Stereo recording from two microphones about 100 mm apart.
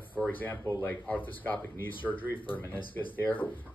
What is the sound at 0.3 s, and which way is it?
Speech, 15° left (ahead or behind).